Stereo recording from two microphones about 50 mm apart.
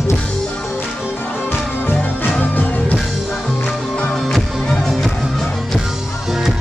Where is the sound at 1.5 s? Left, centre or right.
Left.